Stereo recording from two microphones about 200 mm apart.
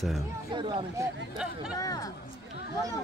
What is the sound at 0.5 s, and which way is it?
Speech, 25° right (ahead or behind).